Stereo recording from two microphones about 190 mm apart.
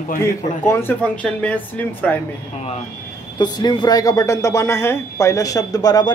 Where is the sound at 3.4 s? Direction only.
20° left (ahead or behind).